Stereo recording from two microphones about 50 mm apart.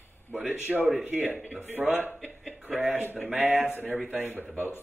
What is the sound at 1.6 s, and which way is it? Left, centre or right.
Speech, right.